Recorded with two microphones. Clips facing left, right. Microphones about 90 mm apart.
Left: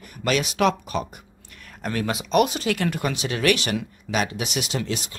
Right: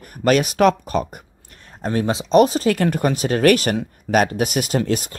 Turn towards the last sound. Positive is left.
turn(degrees=-45)  # may be behind; listen again after turning